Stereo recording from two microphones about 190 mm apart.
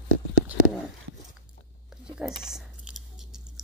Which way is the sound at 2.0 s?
5° right (ahead or behind).